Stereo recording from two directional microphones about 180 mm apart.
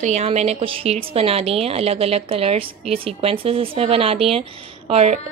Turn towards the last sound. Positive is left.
turn(degrees=-35)  # may be behind; listen again after turning